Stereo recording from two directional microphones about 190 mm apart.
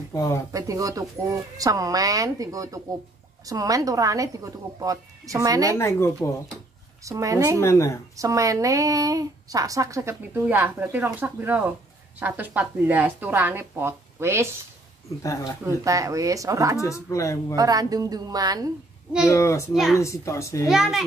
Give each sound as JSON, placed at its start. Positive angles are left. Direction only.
{"t": 0.1, "sound": "speech", "side_deg": 15}
{"t": 0.5, "sound": "speech", "side_deg": -15}
{"t": 5.8, "sound": "speech", "side_deg": 15}
{"t": 7.0, "sound": "speech", "side_deg": -15}
{"t": 7.6, "sound": "speech", "side_deg": 15}
{"t": 8.2, "sound": "speech", "side_deg": -15}
{"t": 15.2, "sound": "speech", "side_deg": 15}
{"t": 15.6, "sound": "speech", "side_deg": -15}
{"t": 16.7, "sound": "speech", "side_deg": 15}
{"t": 17.6, "sound": "a woman's voice", "side_deg": -20}
{"t": 19.2, "sound": "speech", "side_deg": 15}
{"t": 19.7, "sound": "a child's voice", "side_deg": 0}
{"t": 20.0, "sound": "speech", "side_deg": 15}
{"t": 20.6, "sound": "a child's voice", "side_deg": 0}